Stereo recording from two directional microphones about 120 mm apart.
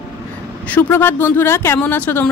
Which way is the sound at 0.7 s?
15° left (ahead or behind).